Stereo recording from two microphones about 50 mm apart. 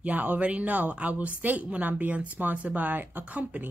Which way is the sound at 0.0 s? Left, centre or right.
Right.